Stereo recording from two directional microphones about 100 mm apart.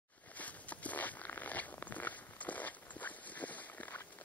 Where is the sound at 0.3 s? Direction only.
15° left (ahead or behind).